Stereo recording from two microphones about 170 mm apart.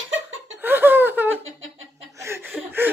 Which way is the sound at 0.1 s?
90° right.